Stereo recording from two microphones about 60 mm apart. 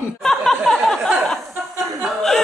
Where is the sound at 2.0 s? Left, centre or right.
Centre.